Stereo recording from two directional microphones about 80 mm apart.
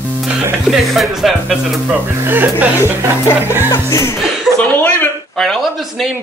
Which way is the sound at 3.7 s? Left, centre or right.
Left.